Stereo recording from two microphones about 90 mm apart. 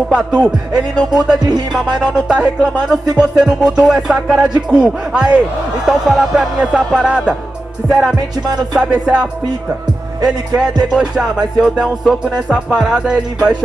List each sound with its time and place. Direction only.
0.1 s music: 10° right (ahead or behind)
1.4 s music: 50° right (ahead or behind)
1.9 s music: 10° right (ahead or behind)
10.8 s music: 10° right (ahead or behind)